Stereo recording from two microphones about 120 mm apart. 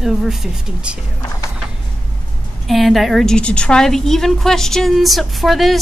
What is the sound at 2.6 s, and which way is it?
Speech, centre (ahead or behind).